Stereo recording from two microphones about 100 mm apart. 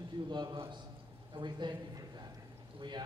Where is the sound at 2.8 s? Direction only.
45° right (ahead or behind).